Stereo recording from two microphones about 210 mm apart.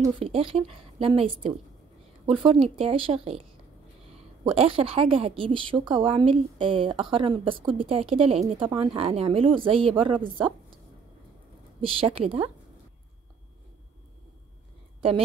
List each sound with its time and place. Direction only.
0.2 s a woman's voice: 25° right (ahead or behind)
4.6 s a woman's voice: 25° right (ahead or behind)
11.8 s a woman's voice: 25° right (ahead or behind)
15.0 s a woman's voice: 25° right (ahead or behind)